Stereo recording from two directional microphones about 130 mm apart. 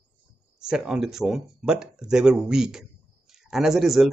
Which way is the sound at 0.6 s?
5° right (ahead or behind).